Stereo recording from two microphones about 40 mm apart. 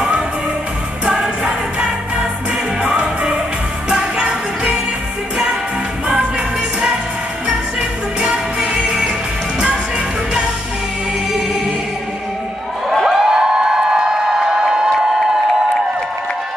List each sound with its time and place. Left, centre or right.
1.0 s music: centre
8.2 s music: right
13.0 s a sound: centre